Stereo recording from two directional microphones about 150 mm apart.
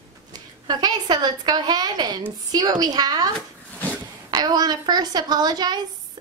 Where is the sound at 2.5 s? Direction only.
25° right (ahead or behind).